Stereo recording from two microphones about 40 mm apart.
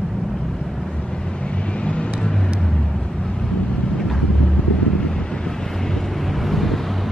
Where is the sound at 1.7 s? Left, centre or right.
Left.